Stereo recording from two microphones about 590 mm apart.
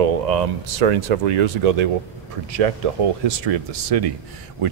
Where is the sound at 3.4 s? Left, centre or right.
Right.